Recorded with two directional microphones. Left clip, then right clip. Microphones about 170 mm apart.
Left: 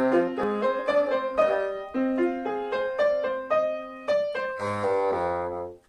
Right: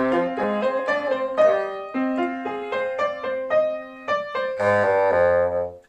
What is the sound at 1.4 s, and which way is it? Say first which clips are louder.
Music: right 6 dB; 20° right (ahead or behind).